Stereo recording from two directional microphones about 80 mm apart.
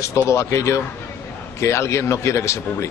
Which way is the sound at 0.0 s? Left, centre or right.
Left.